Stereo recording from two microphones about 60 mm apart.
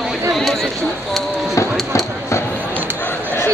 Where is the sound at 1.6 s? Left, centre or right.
Left.